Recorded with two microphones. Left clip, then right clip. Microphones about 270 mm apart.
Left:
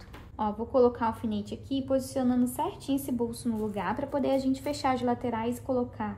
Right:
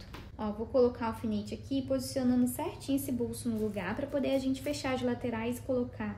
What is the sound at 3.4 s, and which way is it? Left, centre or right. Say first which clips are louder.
A woman's voice: left 3 dB; centre.